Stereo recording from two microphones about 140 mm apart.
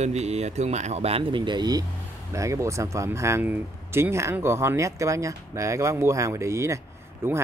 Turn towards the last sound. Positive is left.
turn(degrees=-15)  # may be behind; listen again after turning